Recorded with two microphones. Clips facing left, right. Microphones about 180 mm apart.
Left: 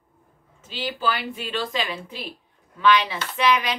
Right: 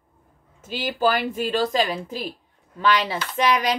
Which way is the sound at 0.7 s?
45° right (ahead or behind).